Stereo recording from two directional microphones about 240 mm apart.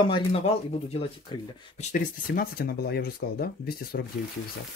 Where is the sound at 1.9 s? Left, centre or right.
Left.